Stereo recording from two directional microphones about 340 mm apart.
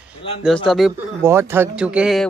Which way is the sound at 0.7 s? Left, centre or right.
Centre.